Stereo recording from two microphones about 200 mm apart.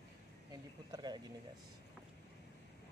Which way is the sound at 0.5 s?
20° right (ahead or behind).